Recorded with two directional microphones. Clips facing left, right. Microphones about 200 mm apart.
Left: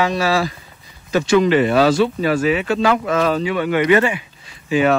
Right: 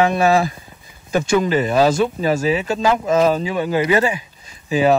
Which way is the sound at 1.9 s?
45° right (ahead or behind).